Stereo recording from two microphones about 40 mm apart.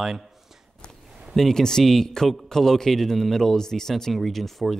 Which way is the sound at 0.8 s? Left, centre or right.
Left.